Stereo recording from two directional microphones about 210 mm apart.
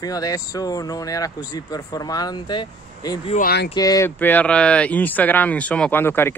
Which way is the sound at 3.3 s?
45° left (ahead or behind).